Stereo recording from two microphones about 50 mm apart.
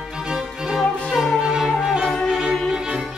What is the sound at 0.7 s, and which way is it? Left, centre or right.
Music, centre.